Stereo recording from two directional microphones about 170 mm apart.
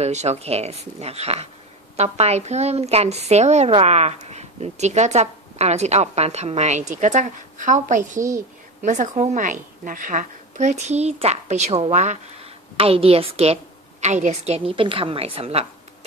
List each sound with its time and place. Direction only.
0.0 s a woman's voice: 40° right (ahead or behind)
8.2 s a child's voice: 15° right (ahead or behind)
8.8 s a woman's voice: 45° right (ahead or behind)